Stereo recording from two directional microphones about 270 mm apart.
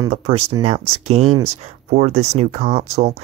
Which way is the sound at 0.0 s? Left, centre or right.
Right.